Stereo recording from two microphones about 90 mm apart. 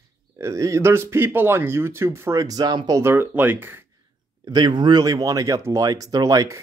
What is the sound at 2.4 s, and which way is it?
Speech, 50° right (ahead or behind).